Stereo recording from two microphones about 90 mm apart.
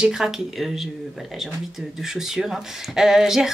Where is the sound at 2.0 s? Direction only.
5° right (ahead or behind).